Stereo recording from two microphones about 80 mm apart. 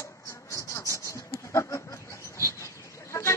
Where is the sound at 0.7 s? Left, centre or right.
Left.